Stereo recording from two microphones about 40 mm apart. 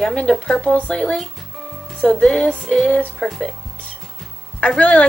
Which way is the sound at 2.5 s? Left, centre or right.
Centre.